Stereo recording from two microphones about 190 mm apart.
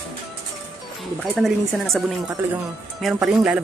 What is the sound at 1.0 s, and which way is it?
Speech, centre (ahead or behind).